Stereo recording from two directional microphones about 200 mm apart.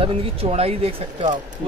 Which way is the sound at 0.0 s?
30° right (ahead or behind).